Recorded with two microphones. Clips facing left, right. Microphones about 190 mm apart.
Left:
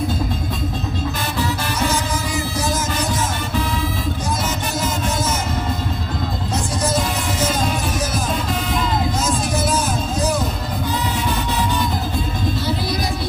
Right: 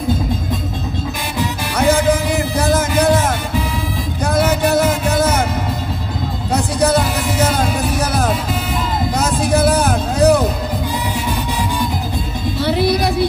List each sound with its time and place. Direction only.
1.8 s music: 60° right (ahead or behind)
6.5 s music: 65° right (ahead or behind)
9.1 s vehicle: 60° right (ahead or behind)
12.6 s music: 65° right (ahead or behind)